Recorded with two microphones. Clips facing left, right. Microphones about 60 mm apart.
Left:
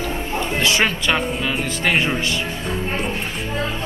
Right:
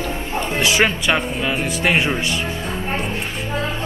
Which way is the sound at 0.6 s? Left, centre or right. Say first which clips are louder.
Right 2 dB; centre.